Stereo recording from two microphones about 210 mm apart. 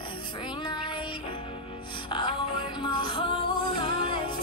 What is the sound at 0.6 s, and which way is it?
Child singing, 25° left (ahead or behind).